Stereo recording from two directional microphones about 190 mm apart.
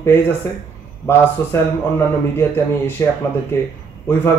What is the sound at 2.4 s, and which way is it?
Speech, 10° left (ahead or behind).